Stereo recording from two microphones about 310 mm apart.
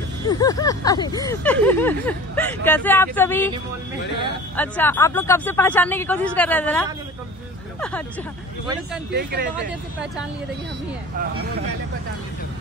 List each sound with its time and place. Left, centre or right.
0.3 s speech: centre
4.6 s speech: centre
9.1 s speech: right